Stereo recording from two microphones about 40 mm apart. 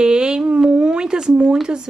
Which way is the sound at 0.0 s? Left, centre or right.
Centre.